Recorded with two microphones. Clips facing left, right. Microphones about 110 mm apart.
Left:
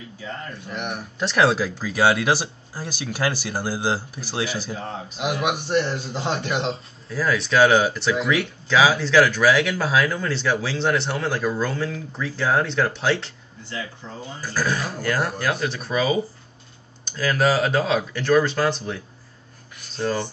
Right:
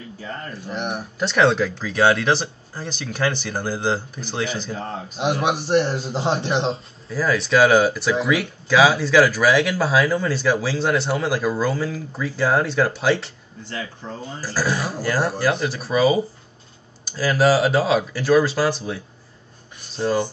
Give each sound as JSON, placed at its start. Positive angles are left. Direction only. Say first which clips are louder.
{"t": 0.7, "sound": "a man's voice", "louder": "right 4 dB", "side_deg": -30}
{"t": 1.2, "sound": "speech", "louder": "right 2 dB", "side_deg": 5}
{"t": 4.7, "sound": "a man's voice", "louder": "right 2 dB", "side_deg": -35}
{"t": 6.7, "sound": "speech", "louder": "right 2 dB", "side_deg": 0}
{"t": 14.4, "sound": "speech", "louder": "right 1 dB", "side_deg": -5}